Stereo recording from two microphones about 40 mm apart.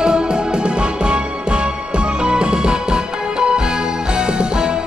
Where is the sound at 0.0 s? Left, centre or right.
Centre.